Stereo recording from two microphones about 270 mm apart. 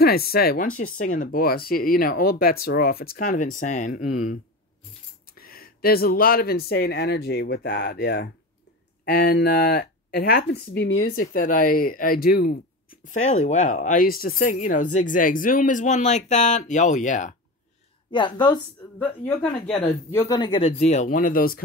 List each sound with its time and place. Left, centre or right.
0.0 s speech: left
5.4 s speech: left
18.1 s speech: centre
19.2 s speech: centre; by 21.6 s left